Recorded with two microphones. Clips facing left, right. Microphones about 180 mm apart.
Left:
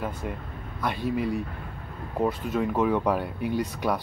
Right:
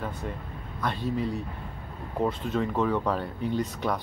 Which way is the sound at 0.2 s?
10° left (ahead or behind).